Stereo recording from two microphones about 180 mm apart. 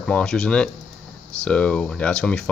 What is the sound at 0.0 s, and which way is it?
Speech, 5° left (ahead or behind).